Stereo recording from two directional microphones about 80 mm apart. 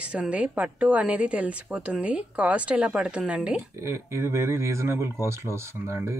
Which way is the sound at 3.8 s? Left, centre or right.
Right.